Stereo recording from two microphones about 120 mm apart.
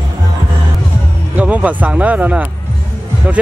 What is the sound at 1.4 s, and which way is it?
Speech, 10° right (ahead or behind).